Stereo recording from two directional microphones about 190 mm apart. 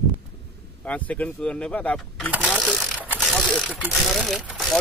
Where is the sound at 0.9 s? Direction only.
5° left (ahead or behind).